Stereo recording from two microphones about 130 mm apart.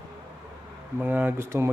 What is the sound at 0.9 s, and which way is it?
Speech, 15° right (ahead or behind).